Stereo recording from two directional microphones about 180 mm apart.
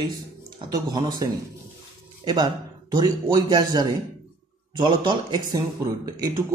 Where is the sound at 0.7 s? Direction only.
20° right (ahead or behind).